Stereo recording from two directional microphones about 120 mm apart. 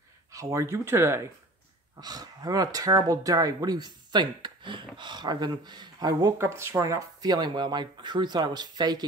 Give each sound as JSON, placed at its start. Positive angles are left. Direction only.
{"t": 0.3, "sound": "speech", "side_deg": -25}
{"t": 2.0, "sound": "speech", "side_deg": -30}
{"t": 6.3, "sound": "speech", "side_deg": -25}